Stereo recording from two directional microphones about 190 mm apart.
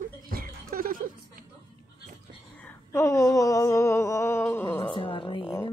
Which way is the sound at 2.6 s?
15° left (ahead or behind).